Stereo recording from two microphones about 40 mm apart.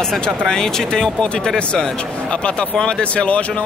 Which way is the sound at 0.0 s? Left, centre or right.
Centre.